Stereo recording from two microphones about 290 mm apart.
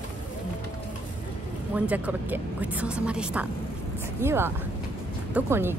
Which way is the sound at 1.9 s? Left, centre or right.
Centre.